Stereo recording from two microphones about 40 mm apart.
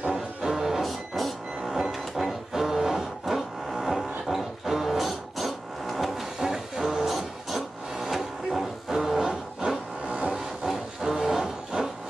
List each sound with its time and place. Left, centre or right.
0.0 s music: centre
0.8 s reversing beeps: centre
1.7 s music: centre